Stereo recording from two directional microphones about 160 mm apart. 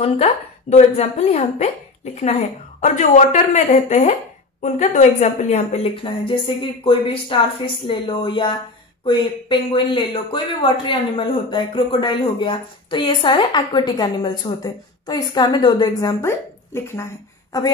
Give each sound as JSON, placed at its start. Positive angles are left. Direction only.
{"t": 0.0, "sound": "a woman's voice", "side_deg": 40}